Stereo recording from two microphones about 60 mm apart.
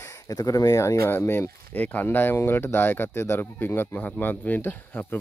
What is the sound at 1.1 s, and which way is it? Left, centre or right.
Speech, left.